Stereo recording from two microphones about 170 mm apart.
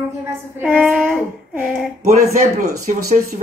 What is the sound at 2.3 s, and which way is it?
Speech, 45° right (ahead or behind).